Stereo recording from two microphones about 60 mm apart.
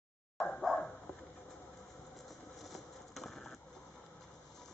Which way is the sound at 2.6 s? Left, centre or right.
Centre.